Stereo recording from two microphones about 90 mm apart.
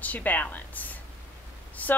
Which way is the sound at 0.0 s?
20° left (ahead or behind).